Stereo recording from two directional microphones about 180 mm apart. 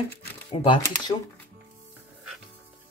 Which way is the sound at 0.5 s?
25° left (ahead or behind).